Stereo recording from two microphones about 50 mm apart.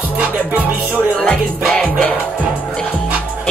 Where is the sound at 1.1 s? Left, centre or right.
Left.